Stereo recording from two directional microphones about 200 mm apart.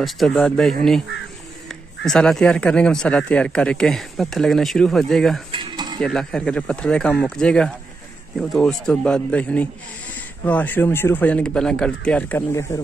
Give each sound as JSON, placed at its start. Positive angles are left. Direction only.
{"t": 0.0, "sound": "speech", "side_deg": 0}
{"t": 5.5, "sound": "mechanisms", "side_deg": -25}
{"t": 5.9, "sound": "speech", "side_deg": 5}